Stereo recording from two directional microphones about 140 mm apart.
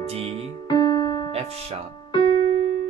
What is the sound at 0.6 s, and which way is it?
Music, 30° left (ahead or behind).